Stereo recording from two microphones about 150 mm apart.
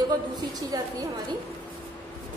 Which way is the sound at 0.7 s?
25° right (ahead or behind).